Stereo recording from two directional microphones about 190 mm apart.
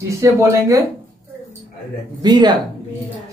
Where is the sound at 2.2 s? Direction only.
20° right (ahead or behind).